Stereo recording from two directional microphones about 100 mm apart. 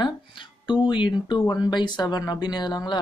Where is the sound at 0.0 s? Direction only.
55° left (ahead or behind).